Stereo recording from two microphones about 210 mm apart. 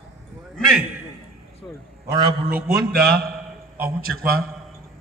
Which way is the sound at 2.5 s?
45° right (ahead or behind).